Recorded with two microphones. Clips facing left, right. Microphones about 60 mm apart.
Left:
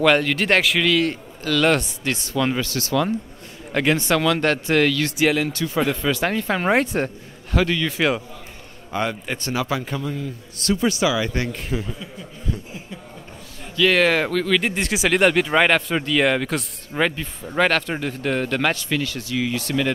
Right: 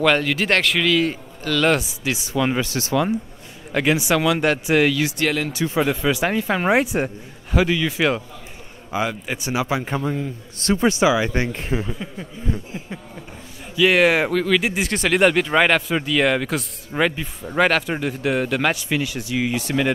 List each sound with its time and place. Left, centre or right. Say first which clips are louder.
0.0 s speech: left 1 dB; centre
3.7 s speech: even; centre
5.1 s speech: left 3 dB; centre
5.5 s speech: right 1 dB; centre
9.9 s speech: right 3 dB; right
13.7 s speech: right 2 dB; centre